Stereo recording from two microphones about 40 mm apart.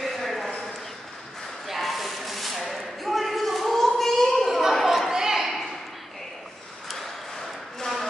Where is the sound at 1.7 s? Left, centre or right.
Centre.